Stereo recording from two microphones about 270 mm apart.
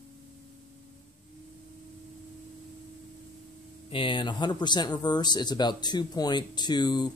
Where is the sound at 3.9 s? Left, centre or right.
Centre.